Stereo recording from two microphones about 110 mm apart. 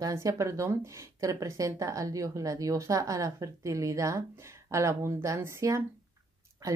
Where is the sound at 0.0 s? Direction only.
30° right (ahead or behind).